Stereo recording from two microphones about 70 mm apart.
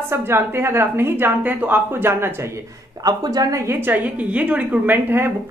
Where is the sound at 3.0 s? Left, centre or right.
Right.